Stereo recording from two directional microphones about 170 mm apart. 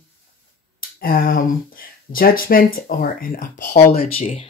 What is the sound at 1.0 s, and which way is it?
Speech, 55° left (ahead or behind).